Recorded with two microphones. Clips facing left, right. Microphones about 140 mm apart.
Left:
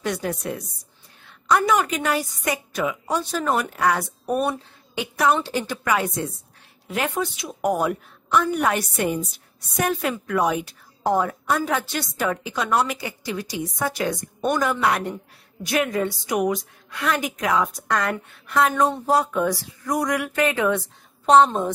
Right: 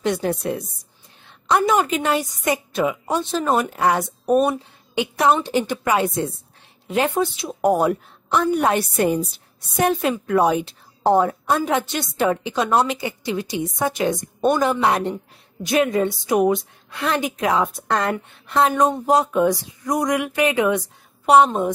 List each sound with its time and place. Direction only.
0.0 s a woman's voice: 25° right (ahead or behind); by 21.7 s 10° right (ahead or behind)